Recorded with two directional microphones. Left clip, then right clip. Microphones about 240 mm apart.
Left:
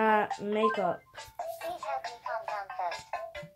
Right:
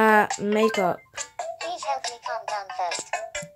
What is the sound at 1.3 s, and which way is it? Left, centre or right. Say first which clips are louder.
Music: right 5 dB; right.